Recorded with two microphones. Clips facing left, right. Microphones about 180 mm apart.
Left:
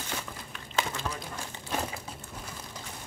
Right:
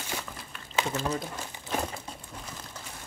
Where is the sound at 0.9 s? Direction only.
35° right (ahead or behind).